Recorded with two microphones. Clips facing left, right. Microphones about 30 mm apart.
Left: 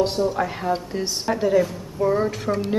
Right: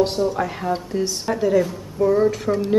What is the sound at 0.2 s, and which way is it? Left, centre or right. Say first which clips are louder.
A woman's voice: right 1 dB; centre.